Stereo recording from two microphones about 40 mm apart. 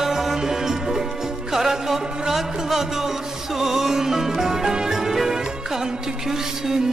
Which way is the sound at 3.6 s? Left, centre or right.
Centre.